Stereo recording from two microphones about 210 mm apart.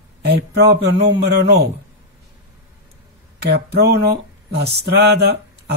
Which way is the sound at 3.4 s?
50° right (ahead or behind).